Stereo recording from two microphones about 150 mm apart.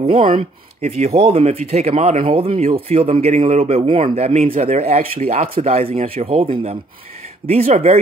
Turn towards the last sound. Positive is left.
turn(degrees=-40)  # may be behind; listen again after turning